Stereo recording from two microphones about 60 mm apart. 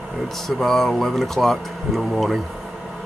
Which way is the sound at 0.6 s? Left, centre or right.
Centre.